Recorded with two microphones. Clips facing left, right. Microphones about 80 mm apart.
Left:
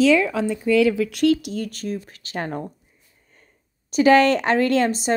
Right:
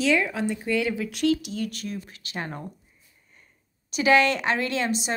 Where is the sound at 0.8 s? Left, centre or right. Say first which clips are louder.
Left 9 dB; left.